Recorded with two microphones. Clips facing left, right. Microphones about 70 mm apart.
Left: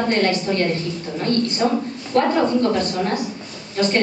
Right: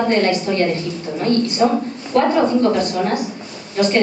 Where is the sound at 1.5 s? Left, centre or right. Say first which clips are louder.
Right 3 dB; centre.